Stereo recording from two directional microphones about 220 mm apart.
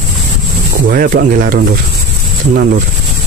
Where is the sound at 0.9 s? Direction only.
40° right (ahead or behind).